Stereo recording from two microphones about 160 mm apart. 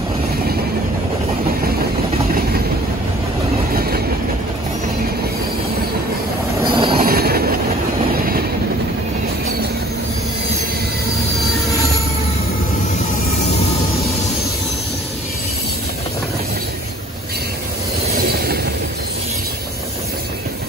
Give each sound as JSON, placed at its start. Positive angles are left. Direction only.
{"t": 3.7, "sound": "train", "side_deg": -70}
{"t": 6.6, "sound": "train", "side_deg": -35}
{"t": 7.0, "sound": "train", "side_deg": -70}